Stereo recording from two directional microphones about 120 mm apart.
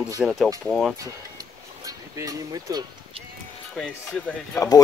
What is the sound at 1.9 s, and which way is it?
Speech, 30° right (ahead or behind).